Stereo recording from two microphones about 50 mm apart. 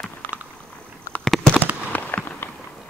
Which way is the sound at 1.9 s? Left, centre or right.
Left.